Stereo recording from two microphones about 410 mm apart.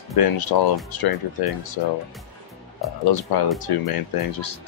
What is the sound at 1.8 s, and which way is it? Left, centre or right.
Speech, left.